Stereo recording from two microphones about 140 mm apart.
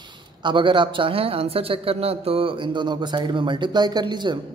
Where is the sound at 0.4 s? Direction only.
35° right (ahead or behind).